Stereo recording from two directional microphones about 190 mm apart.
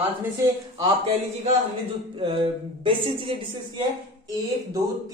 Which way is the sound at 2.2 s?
25° right (ahead or behind).